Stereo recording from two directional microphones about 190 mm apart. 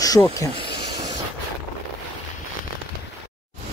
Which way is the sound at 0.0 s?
20° left (ahead or behind).